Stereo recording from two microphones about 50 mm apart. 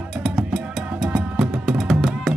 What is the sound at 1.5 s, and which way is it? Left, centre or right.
Music, centre.